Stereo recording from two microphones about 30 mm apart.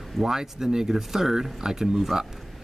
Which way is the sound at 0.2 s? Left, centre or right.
Centre.